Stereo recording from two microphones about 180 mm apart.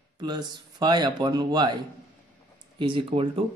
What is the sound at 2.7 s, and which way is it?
Speech, 30° right (ahead or behind).